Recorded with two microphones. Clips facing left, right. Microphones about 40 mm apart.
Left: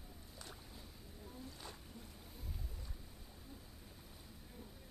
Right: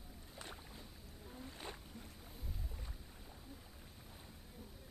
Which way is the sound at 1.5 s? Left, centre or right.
Right.